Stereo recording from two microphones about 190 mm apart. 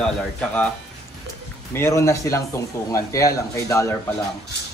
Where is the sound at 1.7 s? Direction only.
15° left (ahead or behind).